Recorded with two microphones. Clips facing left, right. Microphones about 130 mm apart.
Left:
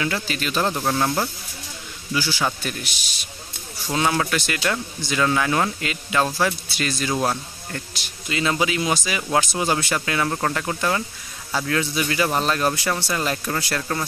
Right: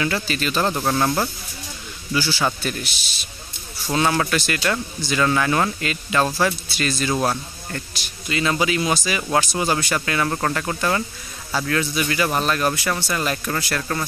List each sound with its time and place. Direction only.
0.0 s speech: 10° left (ahead or behind)
0.7 s speech: centre (ahead or behind)
2.1 s speech: 15° left (ahead or behind)
3.9 s speech: 10° left (ahead or behind)
8.3 s speech: 20° left (ahead or behind)
11.5 s speech: 20° left (ahead or behind)